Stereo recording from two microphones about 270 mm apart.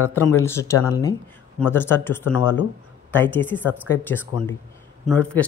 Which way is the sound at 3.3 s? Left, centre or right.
Centre.